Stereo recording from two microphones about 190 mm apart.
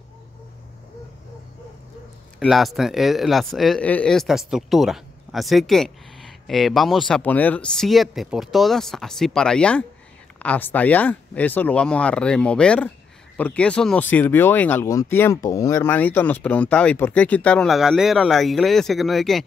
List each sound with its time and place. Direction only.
2.4 s speech: centre (ahead or behind)